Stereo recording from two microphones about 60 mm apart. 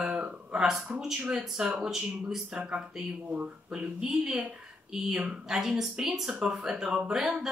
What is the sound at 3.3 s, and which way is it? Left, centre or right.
Speech, right.